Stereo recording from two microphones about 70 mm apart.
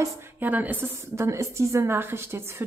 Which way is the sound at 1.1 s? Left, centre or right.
Right.